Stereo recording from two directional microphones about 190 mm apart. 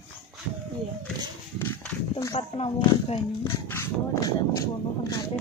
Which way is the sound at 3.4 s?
15° left (ahead or behind).